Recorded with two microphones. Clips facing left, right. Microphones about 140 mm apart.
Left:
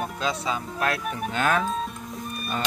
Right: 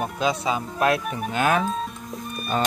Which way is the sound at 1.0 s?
Centre (ahead or behind).